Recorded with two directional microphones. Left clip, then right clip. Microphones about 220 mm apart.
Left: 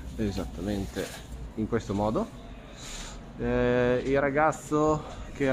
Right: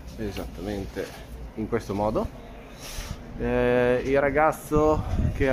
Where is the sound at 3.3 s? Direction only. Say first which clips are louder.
Right 3 dB; 5° left (ahead or behind).